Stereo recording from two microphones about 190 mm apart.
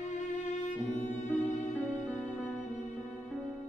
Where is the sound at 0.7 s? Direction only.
40° left (ahead or behind).